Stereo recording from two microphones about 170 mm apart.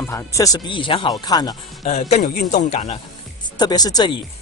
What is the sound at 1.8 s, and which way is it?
Speech, 40° left (ahead or behind).